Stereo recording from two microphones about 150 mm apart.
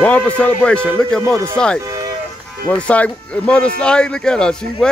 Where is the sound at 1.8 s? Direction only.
25° right (ahead or behind).